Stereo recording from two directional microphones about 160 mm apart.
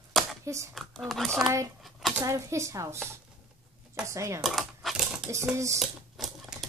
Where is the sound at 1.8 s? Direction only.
Centre (ahead or behind).